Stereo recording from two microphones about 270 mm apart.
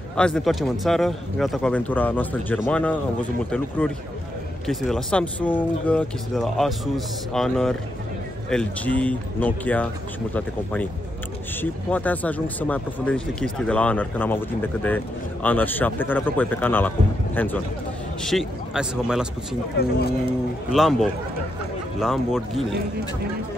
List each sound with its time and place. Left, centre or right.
0.1 s a man's voice: centre
19.8 s speech: left
20.7 s speech: centre